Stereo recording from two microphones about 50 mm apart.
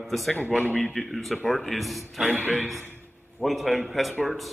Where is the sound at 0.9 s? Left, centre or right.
Centre.